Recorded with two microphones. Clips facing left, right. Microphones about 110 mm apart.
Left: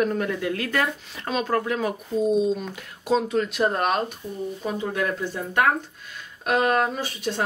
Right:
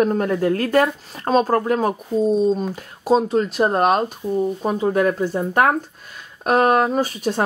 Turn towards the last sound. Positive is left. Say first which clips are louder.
# right 8 dB
turn(degrees=-45)  # may be behind; listen again after turning